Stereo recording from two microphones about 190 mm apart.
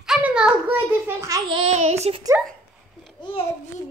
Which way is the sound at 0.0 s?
5° right (ahead or behind).